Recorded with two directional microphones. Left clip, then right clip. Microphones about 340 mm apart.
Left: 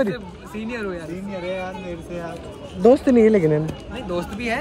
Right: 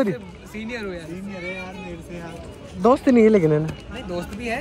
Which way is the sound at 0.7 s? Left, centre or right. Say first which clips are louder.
Left 2 dB; centre.